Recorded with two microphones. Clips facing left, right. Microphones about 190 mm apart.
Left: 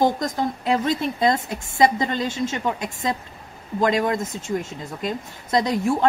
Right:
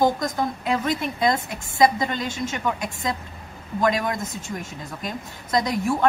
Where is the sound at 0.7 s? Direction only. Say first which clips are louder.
Left 4 dB; 30° left (ahead or behind).